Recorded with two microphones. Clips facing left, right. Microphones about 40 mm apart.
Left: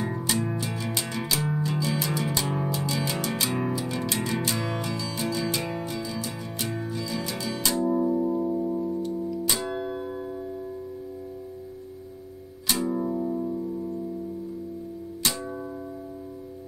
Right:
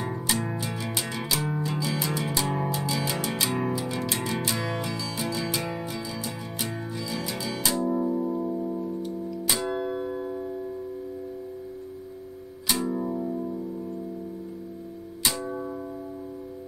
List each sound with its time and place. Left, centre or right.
0.5 s music: centre
12.8 s music: centre
15.2 s music: centre